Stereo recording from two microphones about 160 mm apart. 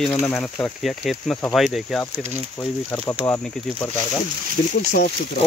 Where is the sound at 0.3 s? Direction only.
5° left (ahead or behind).